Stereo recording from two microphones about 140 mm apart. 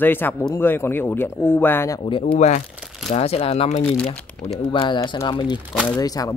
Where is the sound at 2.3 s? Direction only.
55° left (ahead or behind).